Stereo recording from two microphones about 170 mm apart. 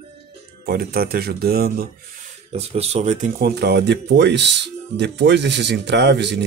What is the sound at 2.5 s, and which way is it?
Speech, 40° right (ahead or behind).